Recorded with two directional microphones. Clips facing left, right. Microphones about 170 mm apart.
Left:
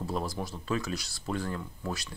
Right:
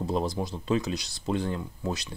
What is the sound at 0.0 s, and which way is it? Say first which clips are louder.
Speech: right 5 dB; 20° right (ahead or behind).